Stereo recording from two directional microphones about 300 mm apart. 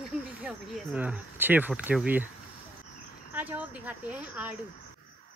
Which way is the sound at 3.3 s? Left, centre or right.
Centre.